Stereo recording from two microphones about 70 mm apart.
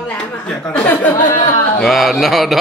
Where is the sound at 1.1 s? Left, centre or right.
Left.